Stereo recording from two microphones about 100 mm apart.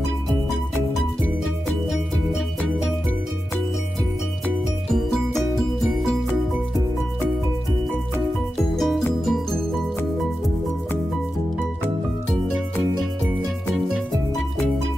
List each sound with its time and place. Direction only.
8.5 s music: centre (ahead or behind)
13.9 s music: centre (ahead or behind)